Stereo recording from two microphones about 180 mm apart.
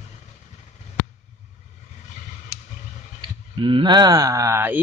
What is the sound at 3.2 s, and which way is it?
Speech, 30° right (ahead or behind).